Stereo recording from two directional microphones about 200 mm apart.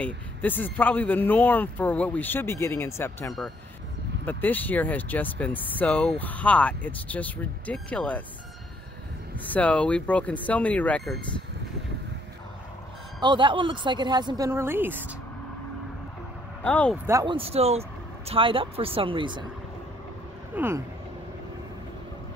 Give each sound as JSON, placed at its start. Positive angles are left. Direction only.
{"t": 0.0, "sound": "speech", "side_deg": 10}
{"t": 9.4, "sound": "speech", "side_deg": 10}
{"t": 13.2, "sound": "a woman's voice", "side_deg": -25}
{"t": 16.6, "sound": "speech", "side_deg": 5}
{"t": 16.9, "sound": "a woman's voice", "side_deg": -15}
{"t": 20.5, "sound": "speech", "side_deg": -10}